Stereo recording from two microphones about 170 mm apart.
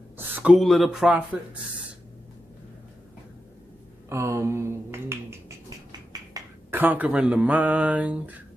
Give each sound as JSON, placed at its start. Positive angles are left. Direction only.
{"t": 0.4, "sound": "speech", "side_deg": -5}
{"t": 4.1, "sound": "finger snapping", "side_deg": -15}
{"t": 5.9, "sound": "a sound", "side_deg": -15}